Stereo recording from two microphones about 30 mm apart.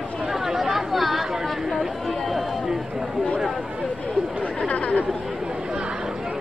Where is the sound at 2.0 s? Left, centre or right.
Centre.